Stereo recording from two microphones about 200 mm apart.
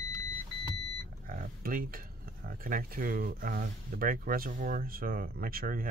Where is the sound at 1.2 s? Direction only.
45° right (ahead or behind).